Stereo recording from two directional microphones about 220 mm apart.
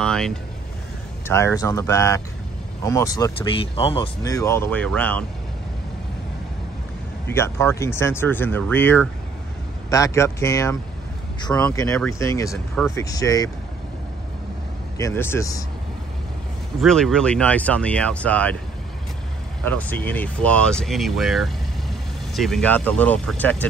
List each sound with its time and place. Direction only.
0.0 s vehicle: 5° left (ahead or behind)
1.2 s speech: 10° left (ahead or behind)
7.2 s speech: 10° left (ahead or behind)
15.0 s speech: 10° left (ahead or behind)
16.8 s speech: centre (ahead or behind)
19.6 s speech: 5° left (ahead or behind)